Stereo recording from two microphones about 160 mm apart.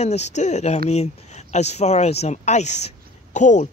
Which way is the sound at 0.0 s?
45° left (ahead or behind).